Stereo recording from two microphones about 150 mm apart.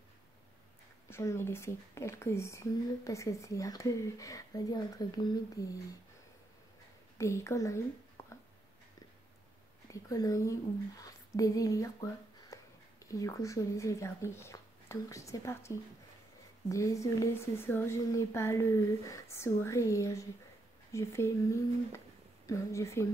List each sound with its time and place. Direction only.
1.1 s speech: 15° left (ahead or behind)
7.2 s speech: 20° left (ahead or behind)
8.2 s a sound: 15° left (ahead or behind)
9.8 s speech: 20° left (ahead or behind)